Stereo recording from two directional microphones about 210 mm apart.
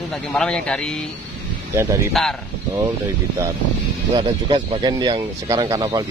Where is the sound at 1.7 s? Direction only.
10° right (ahead or behind).